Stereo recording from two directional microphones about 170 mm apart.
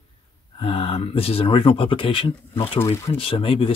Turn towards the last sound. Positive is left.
turn(degrees=30)  # may be behind; listen again after turning